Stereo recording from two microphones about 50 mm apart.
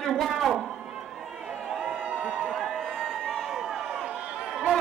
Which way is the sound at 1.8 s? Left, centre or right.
Centre.